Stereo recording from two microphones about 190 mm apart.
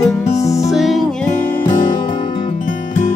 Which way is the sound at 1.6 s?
45° left (ahead or behind).